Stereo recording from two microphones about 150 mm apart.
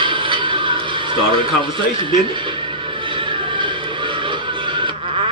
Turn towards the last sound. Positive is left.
turn(degrees=-35)  # may be behind; listen again after turning